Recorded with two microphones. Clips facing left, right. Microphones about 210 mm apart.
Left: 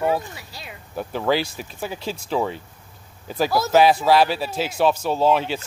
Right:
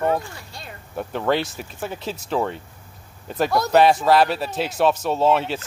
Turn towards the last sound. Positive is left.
turn(degrees=0)  # may be behind; listen again after turning